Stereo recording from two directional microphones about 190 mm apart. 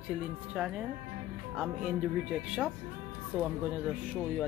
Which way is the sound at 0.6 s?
5° right (ahead or behind).